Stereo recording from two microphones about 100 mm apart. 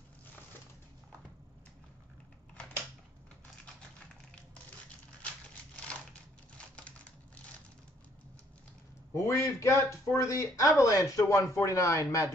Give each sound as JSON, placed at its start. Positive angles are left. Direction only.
{"t": 9.1, "sound": "speech", "side_deg": 30}